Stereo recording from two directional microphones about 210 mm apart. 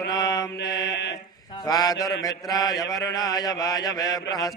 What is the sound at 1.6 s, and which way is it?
Mantra, 15° left (ahead or behind).